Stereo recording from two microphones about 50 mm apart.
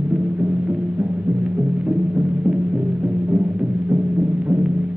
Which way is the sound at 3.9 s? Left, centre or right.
Centre.